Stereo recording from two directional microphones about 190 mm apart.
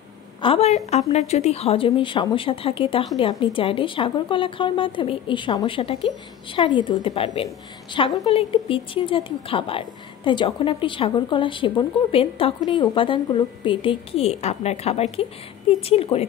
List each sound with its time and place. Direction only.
0.4 s a woman's voice: 30° left (ahead or behind)